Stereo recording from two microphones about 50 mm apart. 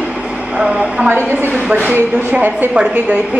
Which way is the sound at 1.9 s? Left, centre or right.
Right.